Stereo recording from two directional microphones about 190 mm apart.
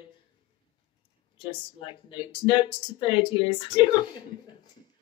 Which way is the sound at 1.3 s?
25° left (ahead or behind).